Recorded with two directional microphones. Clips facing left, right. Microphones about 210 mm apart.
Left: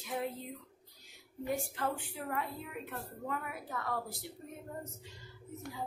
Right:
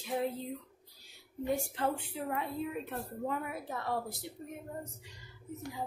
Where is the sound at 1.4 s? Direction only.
25° right (ahead or behind).